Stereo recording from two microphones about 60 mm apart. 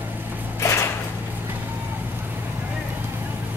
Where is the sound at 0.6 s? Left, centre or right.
Left.